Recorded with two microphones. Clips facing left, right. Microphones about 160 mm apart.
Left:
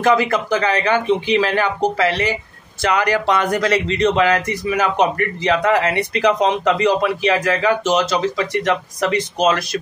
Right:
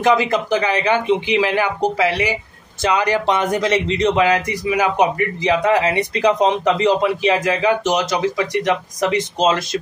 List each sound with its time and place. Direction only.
0.0 s speech: 20° right (ahead or behind)